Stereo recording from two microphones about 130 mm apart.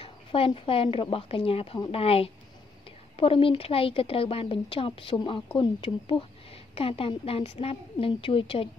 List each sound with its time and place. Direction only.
0.0 s speech: 45° left (ahead or behind)